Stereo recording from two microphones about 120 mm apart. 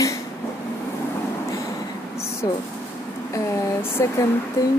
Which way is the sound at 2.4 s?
30° left (ahead or behind).